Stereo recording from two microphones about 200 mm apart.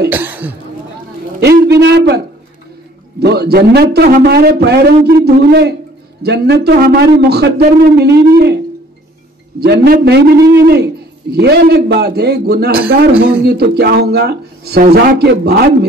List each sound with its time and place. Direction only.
0.1 s a man's voice: 10° right (ahead or behind)
1.4 s a man's voice: 55° right (ahead or behind)
9.6 s a man's voice: 55° right (ahead or behind)
11.3 s a man's voice: 55° right (ahead or behind)
12.8 s a man's voice: 5° right (ahead or behind)
13.4 s a man's voice: 55° right (ahead or behind)